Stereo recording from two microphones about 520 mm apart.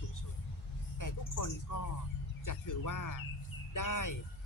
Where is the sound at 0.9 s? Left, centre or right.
Left.